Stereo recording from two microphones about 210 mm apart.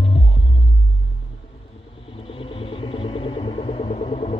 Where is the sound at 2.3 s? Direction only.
25° left (ahead or behind).